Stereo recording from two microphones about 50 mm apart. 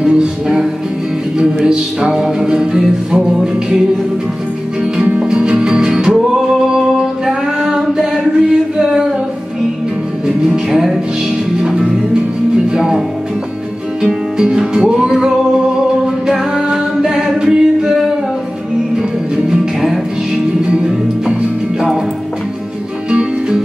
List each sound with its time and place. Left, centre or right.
0.0 s music: centre
1.7 s music: centre
4.9 s music: right
10.2 s music: centre
12.6 s music: centre
14.0 s music: centre
16.3 s a capella: centre
17.4 s singing: centre
19.3 s music: centre
21.7 s music: centre
23.0 s music: centre